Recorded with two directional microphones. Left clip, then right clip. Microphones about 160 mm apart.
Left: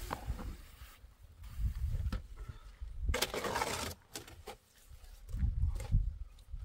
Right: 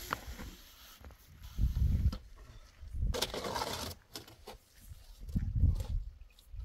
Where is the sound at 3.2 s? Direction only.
5° left (ahead or behind).